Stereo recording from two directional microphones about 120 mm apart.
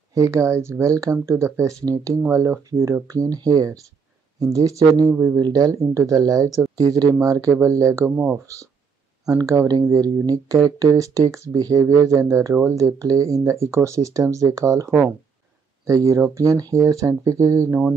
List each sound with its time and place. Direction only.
0.1 s speech: 25° right (ahead or behind)
5.4 s speech: 30° right (ahead or behind)
9.2 s speech: 30° right (ahead or behind)